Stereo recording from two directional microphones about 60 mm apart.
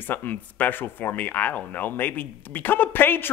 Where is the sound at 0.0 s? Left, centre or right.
Left.